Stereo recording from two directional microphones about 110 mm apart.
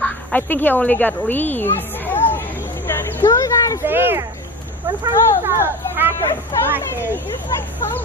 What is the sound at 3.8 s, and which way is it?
Speech, 20° right (ahead or behind).